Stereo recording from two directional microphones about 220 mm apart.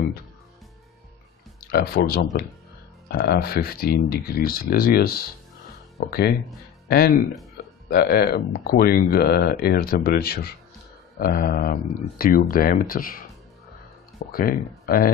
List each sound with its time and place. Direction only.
1.7 s speech: 45° left (ahead or behind)
14.3 s speech: 40° left (ahead or behind)